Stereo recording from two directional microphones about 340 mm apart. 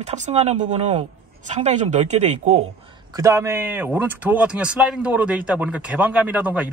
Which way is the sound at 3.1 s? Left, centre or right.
Centre.